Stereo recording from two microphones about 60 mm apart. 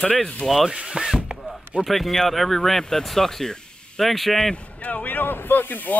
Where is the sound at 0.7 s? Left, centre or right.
Centre.